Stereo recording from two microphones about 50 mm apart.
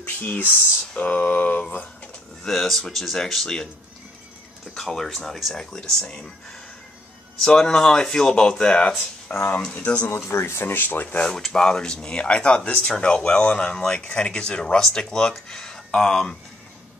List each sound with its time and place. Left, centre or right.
0.0 s speech: left
2.4 s speech: centre
4.7 s speech: centre
7.4 s speech: centre
9.3 s speech: left
9.6 s speech: left
10.3 s speech: left
10.7 s speech: left
11.4 s speech: centre